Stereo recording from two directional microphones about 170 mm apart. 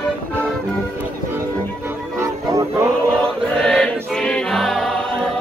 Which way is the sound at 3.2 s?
5° left (ahead or behind).